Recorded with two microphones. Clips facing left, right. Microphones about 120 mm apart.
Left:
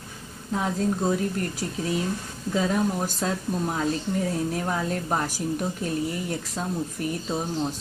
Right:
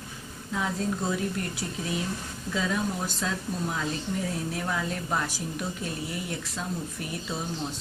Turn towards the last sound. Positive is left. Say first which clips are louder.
# left 5 dB
turn(degrees=30)  # may be behind; listen again after turning